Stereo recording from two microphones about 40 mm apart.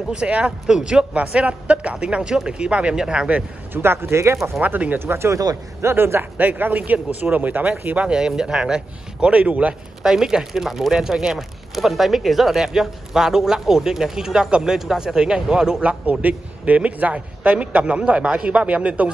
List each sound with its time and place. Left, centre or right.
0.1 s a man's voice: right
1.1 s a man's voice: right
3.7 s speech: right
4.6 s a man's voice: right
4.9 s speech: right
5.8 s a man's voice: right
6.3 s a man's voice: right
8.1 s a man's voice: centre; by 9.8 s right
10.0 s speech: centre
11.3 s speech: centre
15.8 s a man's voice: right